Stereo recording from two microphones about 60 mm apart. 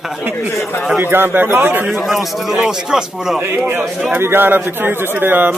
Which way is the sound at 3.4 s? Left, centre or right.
Right.